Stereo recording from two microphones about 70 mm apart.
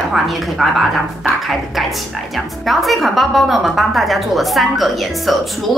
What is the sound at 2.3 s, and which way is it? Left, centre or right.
A woman's voice, centre.